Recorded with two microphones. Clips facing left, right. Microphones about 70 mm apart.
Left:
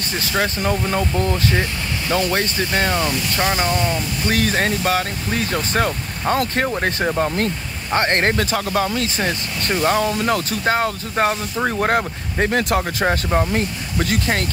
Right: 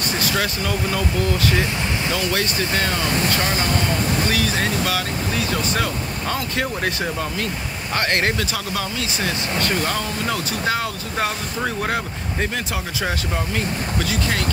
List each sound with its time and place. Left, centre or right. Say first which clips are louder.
0.2 s speech: left 4 dB; left
4.3 s speech: left 2 dB; left
13.0 s speech: left 6 dB; left